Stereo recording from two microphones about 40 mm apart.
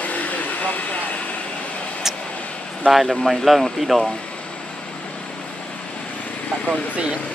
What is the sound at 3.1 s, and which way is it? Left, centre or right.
Speech, centre.